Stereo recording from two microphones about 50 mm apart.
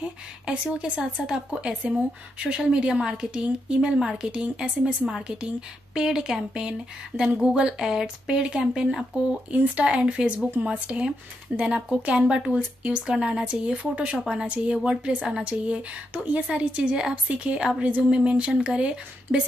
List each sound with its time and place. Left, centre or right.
0.5 s speech: right
4.0 s speech: centre
9.5 s speech: right
11.6 s speech: centre